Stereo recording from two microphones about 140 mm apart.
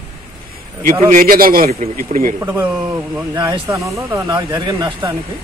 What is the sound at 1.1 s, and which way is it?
Speech, 80° right.